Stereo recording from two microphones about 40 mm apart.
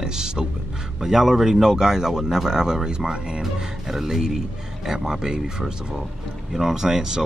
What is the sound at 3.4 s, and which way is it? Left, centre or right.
A man's voice, centre.